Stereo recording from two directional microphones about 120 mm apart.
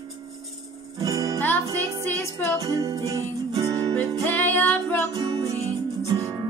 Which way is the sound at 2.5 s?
30° right (ahead or behind).